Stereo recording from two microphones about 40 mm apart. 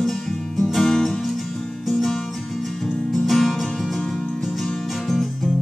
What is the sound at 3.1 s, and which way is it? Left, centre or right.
Music, centre.